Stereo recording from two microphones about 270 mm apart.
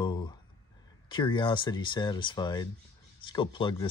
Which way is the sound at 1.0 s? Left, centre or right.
Centre.